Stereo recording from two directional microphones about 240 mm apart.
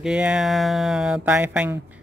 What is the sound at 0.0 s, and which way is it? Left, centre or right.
Speech, centre.